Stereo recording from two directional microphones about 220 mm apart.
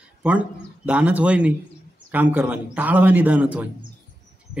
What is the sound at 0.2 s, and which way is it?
A man's voice, 5° right (ahead or behind).